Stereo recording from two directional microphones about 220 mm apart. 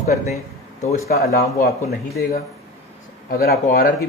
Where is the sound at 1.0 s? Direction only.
45° left (ahead or behind).